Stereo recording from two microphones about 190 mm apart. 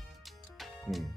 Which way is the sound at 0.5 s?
Centre (ahead or behind).